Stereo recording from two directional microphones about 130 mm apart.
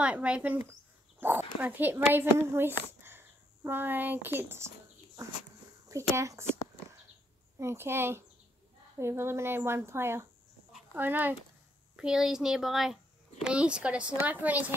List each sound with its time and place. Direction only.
0.0 s speech: 10° right (ahead or behind)